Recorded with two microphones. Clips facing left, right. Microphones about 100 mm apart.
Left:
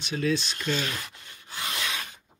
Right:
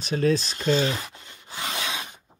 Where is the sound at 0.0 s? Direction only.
40° right (ahead or behind); by 2.0 s 20° right (ahead or behind).